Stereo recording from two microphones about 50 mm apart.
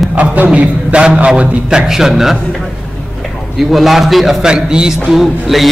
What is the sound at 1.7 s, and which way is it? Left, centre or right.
A man's voice, centre.